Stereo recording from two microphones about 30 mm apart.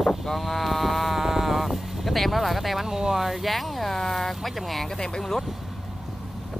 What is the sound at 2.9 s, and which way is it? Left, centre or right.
Speech, centre.